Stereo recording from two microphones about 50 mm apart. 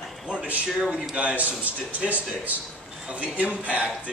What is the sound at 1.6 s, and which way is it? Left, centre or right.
A man's voice, right.